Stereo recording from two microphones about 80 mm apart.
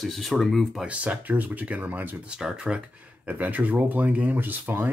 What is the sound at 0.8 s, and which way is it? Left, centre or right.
Speech, centre.